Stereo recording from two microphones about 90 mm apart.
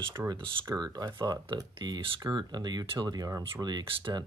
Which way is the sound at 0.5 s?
55° right (ahead or behind).